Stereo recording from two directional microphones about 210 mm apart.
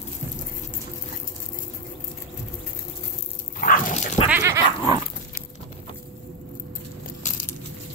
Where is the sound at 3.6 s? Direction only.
40° left (ahead or behind).